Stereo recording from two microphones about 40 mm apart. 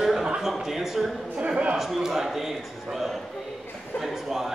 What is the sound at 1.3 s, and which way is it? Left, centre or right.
Speech, right.